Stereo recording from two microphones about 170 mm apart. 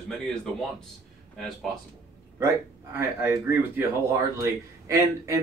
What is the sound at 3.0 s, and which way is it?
Speech, 15° right (ahead or behind).